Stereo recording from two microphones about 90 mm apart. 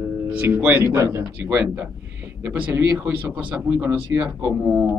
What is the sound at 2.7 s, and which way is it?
Speech, 20° right (ahead or behind).